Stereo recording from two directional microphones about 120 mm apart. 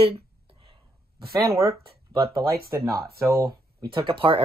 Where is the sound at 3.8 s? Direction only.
45° right (ahead or behind).